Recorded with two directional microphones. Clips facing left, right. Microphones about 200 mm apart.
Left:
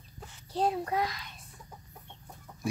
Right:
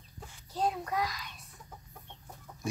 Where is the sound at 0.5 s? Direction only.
30° left (ahead or behind).